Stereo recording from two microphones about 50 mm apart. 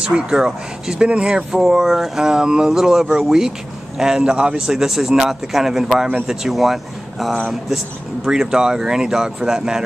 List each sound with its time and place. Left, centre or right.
0.0 s speech: centre
8.3 s speech: centre